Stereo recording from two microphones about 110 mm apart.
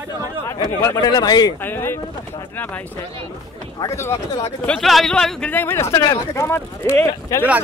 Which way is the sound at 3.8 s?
25° left (ahead or behind).